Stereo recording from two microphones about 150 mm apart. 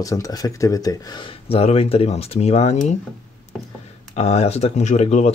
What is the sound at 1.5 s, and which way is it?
Speech, 40° left (ahead or behind).